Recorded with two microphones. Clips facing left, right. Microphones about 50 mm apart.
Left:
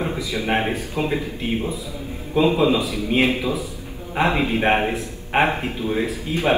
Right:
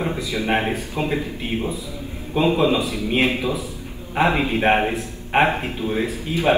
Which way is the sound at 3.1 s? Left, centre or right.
Right.